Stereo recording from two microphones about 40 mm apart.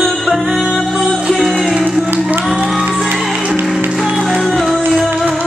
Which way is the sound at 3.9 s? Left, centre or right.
Centre.